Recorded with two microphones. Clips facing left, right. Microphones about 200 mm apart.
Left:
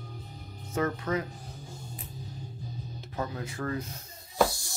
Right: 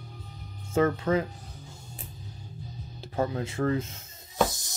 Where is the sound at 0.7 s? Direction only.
30° right (ahead or behind).